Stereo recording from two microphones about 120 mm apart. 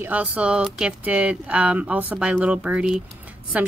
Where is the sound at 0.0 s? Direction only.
15° right (ahead or behind).